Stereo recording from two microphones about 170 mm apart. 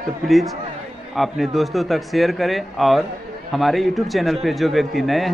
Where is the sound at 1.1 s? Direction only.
Centre (ahead or behind).